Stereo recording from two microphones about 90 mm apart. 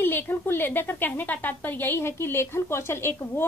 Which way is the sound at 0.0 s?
25° left (ahead or behind).